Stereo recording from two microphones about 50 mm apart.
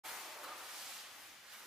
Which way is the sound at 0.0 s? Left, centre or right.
Centre.